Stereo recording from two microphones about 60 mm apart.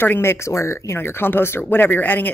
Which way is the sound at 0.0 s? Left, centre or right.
Left.